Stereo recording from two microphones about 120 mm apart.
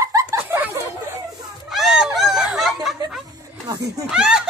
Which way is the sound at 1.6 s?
5° right (ahead or behind).